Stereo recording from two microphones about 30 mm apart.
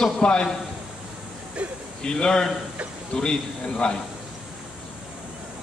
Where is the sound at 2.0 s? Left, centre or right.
Left.